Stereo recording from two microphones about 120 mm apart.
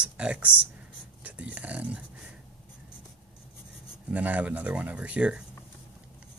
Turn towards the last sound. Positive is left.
turn(degrees=-10)  # may be behind; listen again after turning